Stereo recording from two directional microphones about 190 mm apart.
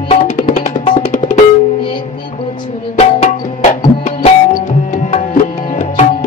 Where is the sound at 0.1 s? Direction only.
40° left (ahead or behind).